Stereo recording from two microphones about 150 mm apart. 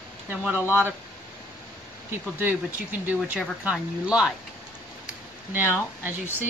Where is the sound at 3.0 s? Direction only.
10° right (ahead or behind).